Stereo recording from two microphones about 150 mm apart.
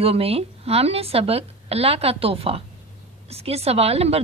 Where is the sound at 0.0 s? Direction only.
40° right (ahead or behind).